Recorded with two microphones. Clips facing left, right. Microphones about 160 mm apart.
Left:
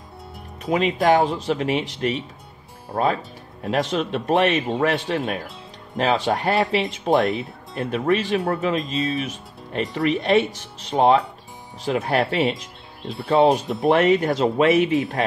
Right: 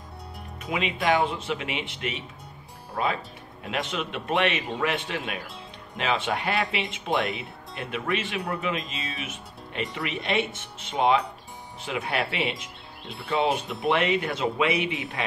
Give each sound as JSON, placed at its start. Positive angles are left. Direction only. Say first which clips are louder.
{"t": 0.7, "sound": "speech", "louder": "left 7 dB", "side_deg": 40}
{"t": 3.6, "sound": "speech", "louder": "left 8 dB", "side_deg": 35}